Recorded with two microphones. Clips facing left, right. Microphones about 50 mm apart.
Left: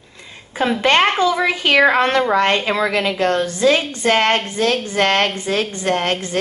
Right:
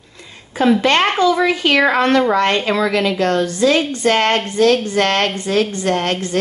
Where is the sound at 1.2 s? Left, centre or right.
Left.